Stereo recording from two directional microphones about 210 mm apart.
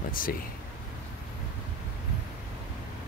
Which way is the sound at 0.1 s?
40° left (ahead or behind).